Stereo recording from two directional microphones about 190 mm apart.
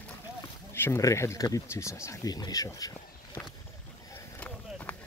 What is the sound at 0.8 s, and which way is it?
Speech, 15° left (ahead or behind).